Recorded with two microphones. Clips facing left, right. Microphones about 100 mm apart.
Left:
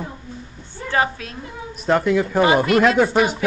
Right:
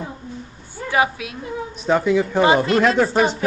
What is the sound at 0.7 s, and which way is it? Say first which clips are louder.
Speech: right 1 dB; 10° right (ahead or behind).